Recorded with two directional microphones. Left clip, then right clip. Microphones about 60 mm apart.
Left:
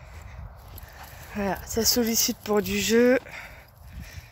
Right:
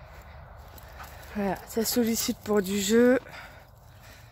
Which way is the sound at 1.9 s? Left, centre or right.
Right.